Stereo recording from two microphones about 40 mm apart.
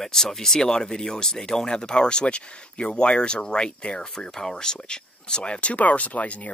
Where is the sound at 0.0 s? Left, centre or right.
Centre.